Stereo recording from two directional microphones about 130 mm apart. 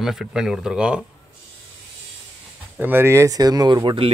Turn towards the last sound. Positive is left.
turn(degrees=-35)  # may be behind; listen again after turning